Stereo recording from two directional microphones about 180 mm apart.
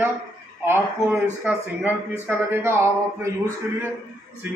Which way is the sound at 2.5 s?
15° right (ahead or behind).